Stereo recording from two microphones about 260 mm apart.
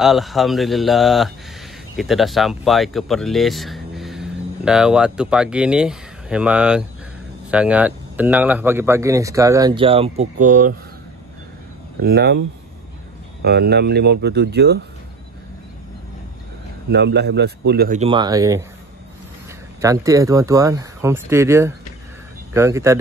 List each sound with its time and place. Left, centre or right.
0.0 s speech: centre; by 10.7 s right
12.0 s speech: right
16.9 s speech: right; by 18.6 s centre
19.8 s speech: centre